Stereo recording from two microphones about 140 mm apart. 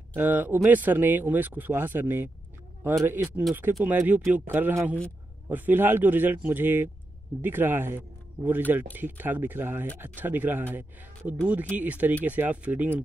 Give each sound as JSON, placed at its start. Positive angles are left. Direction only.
{"t": 0.1, "sound": "speech", "side_deg": -15}